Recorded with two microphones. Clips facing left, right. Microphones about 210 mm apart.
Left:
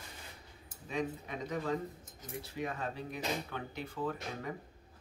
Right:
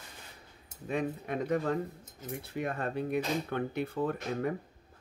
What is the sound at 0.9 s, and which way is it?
Speech, 55° right (ahead or behind).